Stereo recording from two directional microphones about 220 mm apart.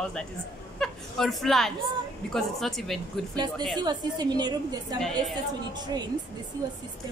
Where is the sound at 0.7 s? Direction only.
Centre (ahead or behind).